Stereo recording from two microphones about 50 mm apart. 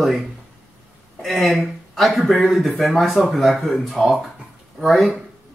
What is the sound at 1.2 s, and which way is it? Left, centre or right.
Speech, centre.